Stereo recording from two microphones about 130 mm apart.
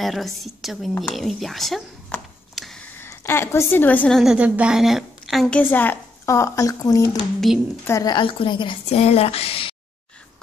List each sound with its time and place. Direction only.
0.0 s a woman's voice: centre (ahead or behind)
2.5 s a sound: centre (ahead or behind)
2.8 s a woman's voice: 20° left (ahead or behind)
4.2 s a woman's voice: 5° right (ahead or behind)
5.6 s speech: 15° left (ahead or behind)
7.3 s a woman's voice: centre (ahead or behind)
7.8 s speech: 25° left (ahead or behind)
8.2 s a woman's voice: 40° left (ahead or behind)
8.8 s speech: 50° left (ahead or behind)